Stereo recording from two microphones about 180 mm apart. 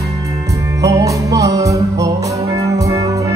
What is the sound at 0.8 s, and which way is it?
Music, 20° right (ahead or behind).